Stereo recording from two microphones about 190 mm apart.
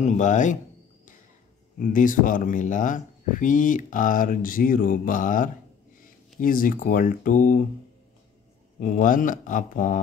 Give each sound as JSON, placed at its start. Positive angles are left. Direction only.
{"t": 0.0, "sound": "speech", "side_deg": 40}
{"t": 1.8, "sound": "speech", "side_deg": 45}
{"t": 8.7, "sound": "speech", "side_deg": 45}